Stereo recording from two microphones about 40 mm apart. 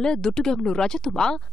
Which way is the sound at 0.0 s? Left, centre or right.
Centre.